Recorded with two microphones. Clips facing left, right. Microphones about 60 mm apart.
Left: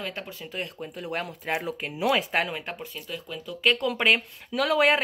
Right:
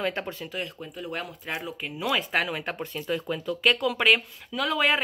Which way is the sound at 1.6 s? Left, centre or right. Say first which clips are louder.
Left 4 dB; left.